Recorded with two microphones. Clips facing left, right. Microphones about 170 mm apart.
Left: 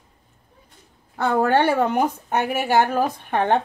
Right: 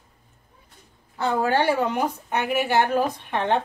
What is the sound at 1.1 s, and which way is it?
A woman's voice, 60° left (ahead or behind).